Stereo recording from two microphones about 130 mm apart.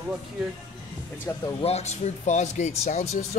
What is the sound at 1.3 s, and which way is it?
Speech, 20° left (ahead or behind).